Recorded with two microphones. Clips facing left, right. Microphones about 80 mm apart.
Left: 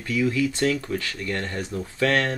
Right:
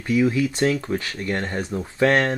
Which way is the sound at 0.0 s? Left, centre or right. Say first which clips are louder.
Right 3 dB; right.